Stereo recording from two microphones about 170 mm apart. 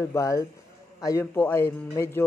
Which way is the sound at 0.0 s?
15° left (ahead or behind).